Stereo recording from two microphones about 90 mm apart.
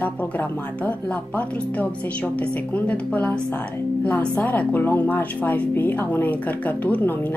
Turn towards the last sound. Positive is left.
turn(degrees=20)  # may be behind; listen again after turning